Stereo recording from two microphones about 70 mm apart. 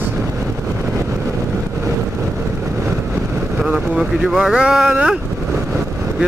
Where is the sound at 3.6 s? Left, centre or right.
Centre.